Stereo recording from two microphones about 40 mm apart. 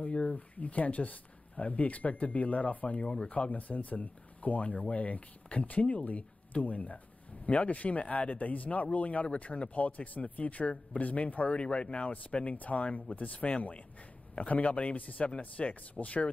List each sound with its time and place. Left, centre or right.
0.3 s speech: left
11.5 s speech: left
15.3 s speech: left
15.7 s speech: left